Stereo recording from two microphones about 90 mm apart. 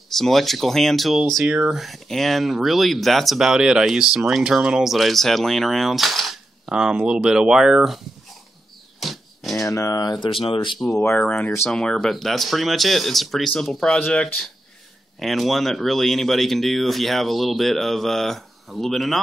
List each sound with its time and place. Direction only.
0.1 s speech: centre (ahead or behind)
9.0 s a sound: centre (ahead or behind)
9.6 s speech: 35° left (ahead or behind)
10.2 s speech: 70° left (ahead or behind)
11.0 s speech: 20° left (ahead or behind)
15.1 s speech: centre (ahead or behind)